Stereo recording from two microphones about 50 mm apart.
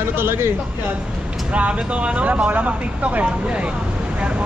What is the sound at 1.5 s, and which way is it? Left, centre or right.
Speech, right.